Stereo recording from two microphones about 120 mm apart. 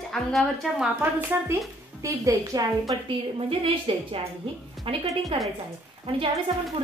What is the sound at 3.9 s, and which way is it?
A woman's voice, 55° right (ahead or behind).